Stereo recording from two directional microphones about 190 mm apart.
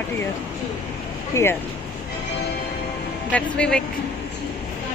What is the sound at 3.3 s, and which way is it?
Speech, 5° left (ahead or behind).